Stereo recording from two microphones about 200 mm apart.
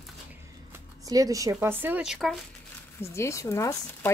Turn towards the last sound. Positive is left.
turn(degrees=15)  # may be behind; listen again after turning